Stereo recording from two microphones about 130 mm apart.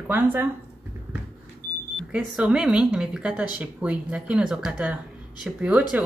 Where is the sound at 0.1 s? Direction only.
15° right (ahead or behind).